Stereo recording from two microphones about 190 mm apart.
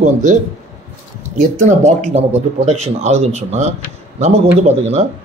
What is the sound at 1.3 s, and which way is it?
A man's voice, 40° right (ahead or behind).